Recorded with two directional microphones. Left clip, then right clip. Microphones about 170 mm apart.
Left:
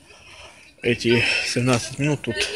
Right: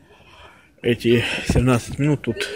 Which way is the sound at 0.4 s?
5° right (ahead or behind).